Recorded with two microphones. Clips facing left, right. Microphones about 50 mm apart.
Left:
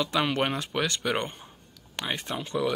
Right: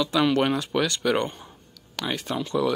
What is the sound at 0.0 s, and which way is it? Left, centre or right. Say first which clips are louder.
Speech: right 4 dB; left.